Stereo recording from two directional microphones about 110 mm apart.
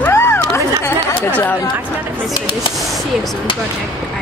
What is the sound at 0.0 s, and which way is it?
Chatter, 25° left (ahead or behind).